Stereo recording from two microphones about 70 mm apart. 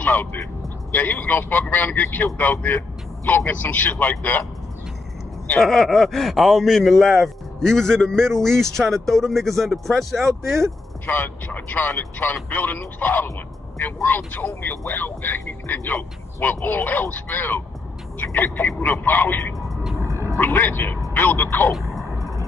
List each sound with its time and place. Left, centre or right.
0.0 s vehicle: left
0.9 s a man's voice: left
5.6 s speech: centre
11.1 s a man's voice: left
19.7 s vehicle: centre
20.1 s a sound: right
20.3 s a man's voice: left
21.7 s a sound: centre